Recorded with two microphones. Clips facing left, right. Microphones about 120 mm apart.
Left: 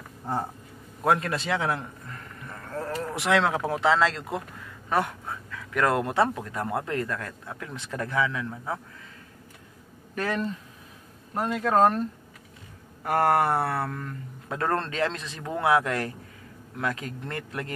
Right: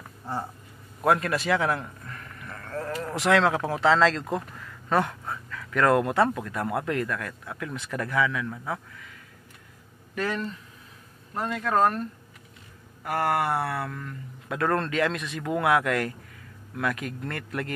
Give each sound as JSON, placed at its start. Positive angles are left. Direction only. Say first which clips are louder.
{"t": 1.0, "sound": "a sound", "louder": "right 1 dB", "side_deg": 25}
{"t": 3.3, "sound": "speech", "louder": "right 2 dB", "side_deg": 20}
{"t": 11.3, "sound": "speech", "louder": "left 2 dB", "side_deg": 20}
{"t": 13.0, "sound": "speech", "louder": "left 3 dB", "side_deg": 45}